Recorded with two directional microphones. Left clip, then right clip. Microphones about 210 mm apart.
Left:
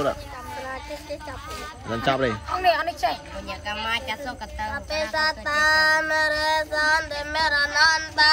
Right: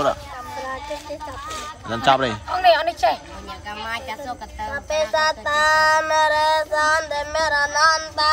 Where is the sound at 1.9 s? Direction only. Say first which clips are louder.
Right 5 dB; 10° right (ahead or behind).